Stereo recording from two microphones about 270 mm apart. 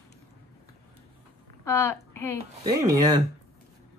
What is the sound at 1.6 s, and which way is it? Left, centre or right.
Speech, centre.